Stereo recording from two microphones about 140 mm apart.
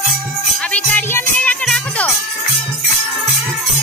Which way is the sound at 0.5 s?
10° left (ahead or behind).